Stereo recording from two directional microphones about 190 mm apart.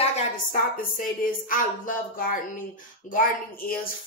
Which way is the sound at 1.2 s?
45° left (ahead or behind).